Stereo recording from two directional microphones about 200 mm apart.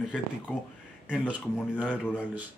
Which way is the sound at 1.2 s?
5° right (ahead or behind).